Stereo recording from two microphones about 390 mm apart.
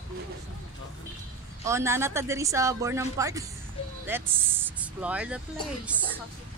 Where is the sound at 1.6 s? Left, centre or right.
Centre.